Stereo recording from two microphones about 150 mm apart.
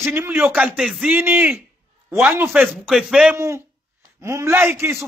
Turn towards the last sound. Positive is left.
turn(degrees=-15)  # may be behind; listen again after turning